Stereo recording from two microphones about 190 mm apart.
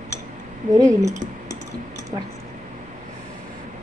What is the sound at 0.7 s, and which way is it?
Speech, 20° right (ahead or behind).